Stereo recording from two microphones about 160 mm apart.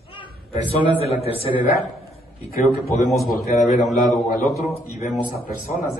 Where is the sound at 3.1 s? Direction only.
Centre (ahead or behind).